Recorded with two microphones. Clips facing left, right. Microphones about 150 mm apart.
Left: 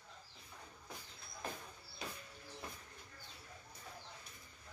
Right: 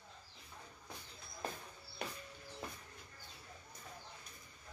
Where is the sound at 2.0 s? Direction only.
60° right (ahead or behind).